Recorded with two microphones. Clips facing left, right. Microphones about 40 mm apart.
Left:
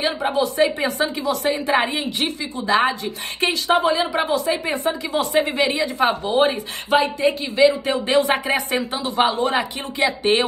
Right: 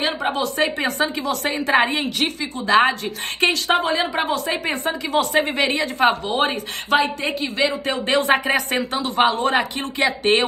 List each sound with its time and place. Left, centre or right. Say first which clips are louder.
0.3 s a woman's voice: left 5 dB; right